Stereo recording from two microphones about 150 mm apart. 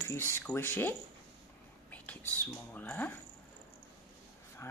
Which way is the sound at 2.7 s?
15° left (ahead or behind).